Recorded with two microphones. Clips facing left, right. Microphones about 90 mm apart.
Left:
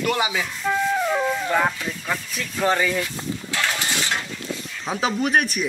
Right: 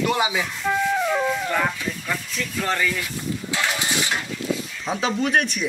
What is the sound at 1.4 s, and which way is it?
Speech, 15° left (ahead or behind).